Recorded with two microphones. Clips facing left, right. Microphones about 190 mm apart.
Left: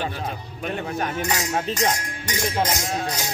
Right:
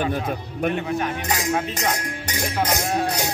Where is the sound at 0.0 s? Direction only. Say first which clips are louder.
Right 5 dB; 55° right (ahead or behind).